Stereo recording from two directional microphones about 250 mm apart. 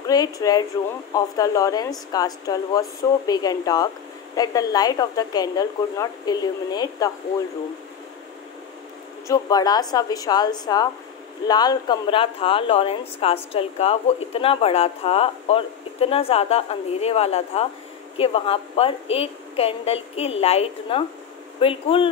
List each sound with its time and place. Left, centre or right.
0.0 s speech: centre
9.3 s a woman's voice: centre